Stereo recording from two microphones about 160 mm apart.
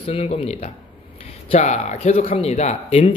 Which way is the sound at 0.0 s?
40° left (ahead or behind).